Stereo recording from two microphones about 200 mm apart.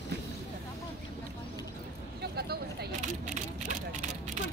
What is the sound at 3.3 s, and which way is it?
Vehicle, 35° right (ahead or behind).